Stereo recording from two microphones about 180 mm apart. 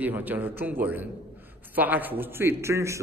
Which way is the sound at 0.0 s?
10° right (ahead or behind).